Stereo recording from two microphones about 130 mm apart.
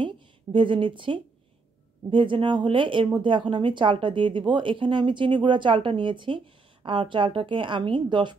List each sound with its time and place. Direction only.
0.0 s speech: 40° right (ahead or behind)